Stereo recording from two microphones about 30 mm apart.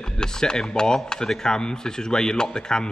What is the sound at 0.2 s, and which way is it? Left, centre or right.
Speech, left.